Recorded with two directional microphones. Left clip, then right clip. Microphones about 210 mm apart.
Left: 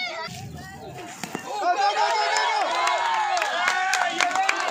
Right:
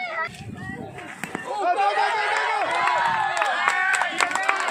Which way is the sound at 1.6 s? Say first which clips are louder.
Right 1 dB; 45° right (ahead or behind).